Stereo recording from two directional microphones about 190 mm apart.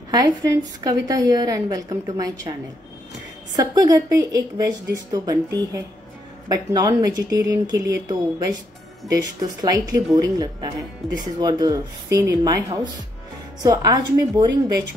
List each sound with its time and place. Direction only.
0.1 s a woman's voice: 20° right (ahead or behind)
3.5 s a woman's voice: 20° right (ahead or behind)